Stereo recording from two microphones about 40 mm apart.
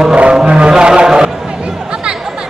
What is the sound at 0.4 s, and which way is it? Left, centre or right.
Music, right.